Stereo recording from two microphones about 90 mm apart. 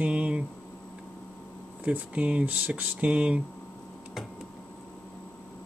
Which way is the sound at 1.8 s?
15° right (ahead or behind).